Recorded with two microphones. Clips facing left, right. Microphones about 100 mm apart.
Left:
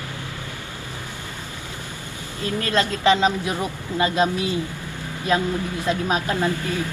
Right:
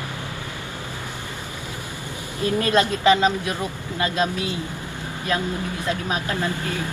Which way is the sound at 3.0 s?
20° left (ahead or behind).